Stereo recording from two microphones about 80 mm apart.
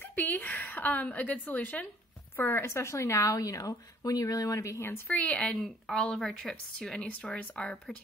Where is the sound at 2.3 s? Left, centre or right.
Left.